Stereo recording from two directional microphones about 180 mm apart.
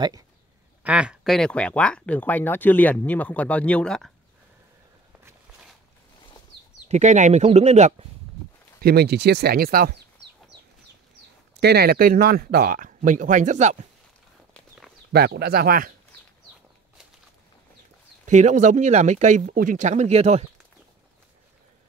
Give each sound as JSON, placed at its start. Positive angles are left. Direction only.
{"t": 0.8, "sound": "speech", "side_deg": -5}
{"t": 6.9, "sound": "speech", "side_deg": -40}
{"t": 8.8, "sound": "speech", "side_deg": -60}
{"t": 11.6, "sound": "speech", "side_deg": -60}
{"t": 15.1, "sound": "speech", "side_deg": -65}
{"t": 18.2, "sound": "speech", "side_deg": -40}